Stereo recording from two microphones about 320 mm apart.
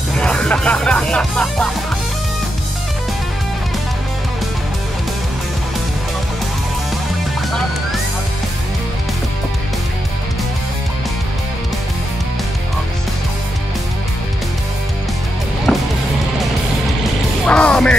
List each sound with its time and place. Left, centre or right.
0.2 s music: centre
17.5 s music: centre